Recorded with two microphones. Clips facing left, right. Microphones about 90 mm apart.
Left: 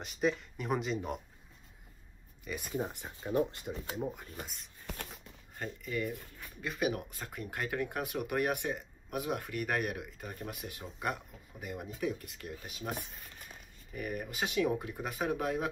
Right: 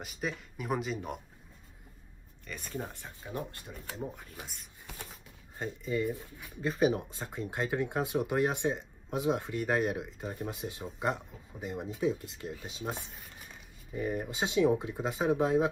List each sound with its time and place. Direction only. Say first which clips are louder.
0.0 s speech: left 5 dB; centre (ahead or behind)
2.4 s speech: left 3 dB; 10° left (ahead or behind)
4.0 s speech: left 2 dB; centre (ahead or behind)
5.6 s speech: right 4 dB; 20° right (ahead or behind)
6.6 s speech: right 6 dB; 30° right (ahead or behind)